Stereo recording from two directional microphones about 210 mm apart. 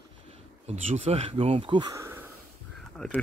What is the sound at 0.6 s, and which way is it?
Speech, 30° right (ahead or behind).